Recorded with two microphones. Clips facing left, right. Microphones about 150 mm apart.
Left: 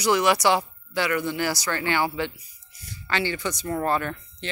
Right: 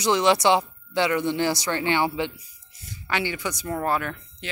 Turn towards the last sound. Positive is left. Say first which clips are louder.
# left 1 dB
turn(degrees=-5)  # may be behind; listen again after turning